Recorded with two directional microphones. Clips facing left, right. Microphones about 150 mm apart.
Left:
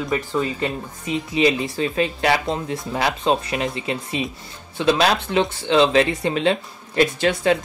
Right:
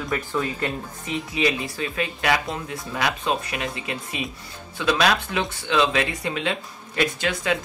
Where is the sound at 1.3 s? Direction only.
25° left (ahead or behind).